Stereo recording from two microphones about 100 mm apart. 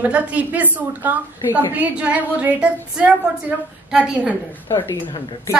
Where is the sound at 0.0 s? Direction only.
15° right (ahead or behind).